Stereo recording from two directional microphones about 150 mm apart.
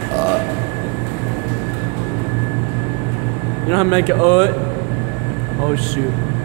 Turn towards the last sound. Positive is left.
turn(degrees=-35)  # may be behind; listen again after turning